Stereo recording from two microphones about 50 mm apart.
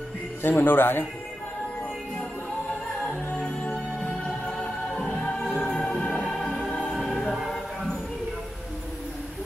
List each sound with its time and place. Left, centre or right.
0.4 s speech: left
3.1 s music: centre
7.2 s music: centre